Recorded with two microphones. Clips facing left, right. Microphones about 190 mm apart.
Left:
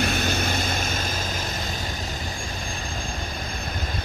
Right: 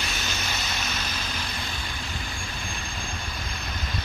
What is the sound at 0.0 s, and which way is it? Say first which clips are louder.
Vehicle: left 9 dB; 55° left (ahead or behind).